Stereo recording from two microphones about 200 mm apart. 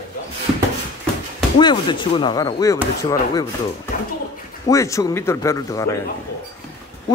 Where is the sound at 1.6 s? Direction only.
25° left (ahead or behind).